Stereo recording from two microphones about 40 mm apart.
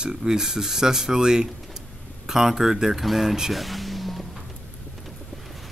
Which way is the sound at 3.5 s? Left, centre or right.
Centre.